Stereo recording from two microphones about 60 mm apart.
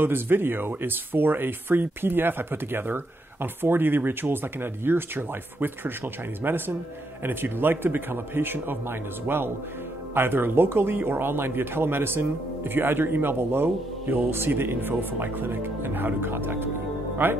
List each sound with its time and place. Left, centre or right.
0.0 s speech: right